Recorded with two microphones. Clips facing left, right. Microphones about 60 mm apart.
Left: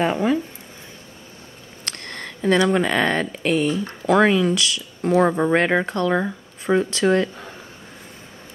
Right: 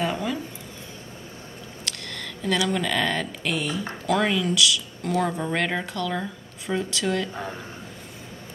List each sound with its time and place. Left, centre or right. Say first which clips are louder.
0.0 s speech: left 7 dB; left
1.9 s speech: left 3 dB; left